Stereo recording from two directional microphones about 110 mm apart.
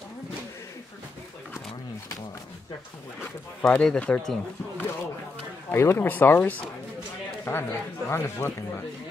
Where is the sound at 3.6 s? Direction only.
5° left (ahead or behind).